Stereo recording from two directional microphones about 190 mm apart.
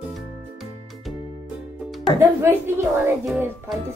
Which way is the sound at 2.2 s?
10° right (ahead or behind).